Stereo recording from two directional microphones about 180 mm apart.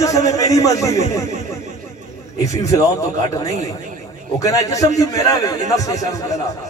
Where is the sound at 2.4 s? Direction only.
20° left (ahead or behind).